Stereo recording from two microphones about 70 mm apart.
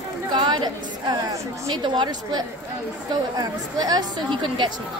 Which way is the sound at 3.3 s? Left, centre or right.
Right.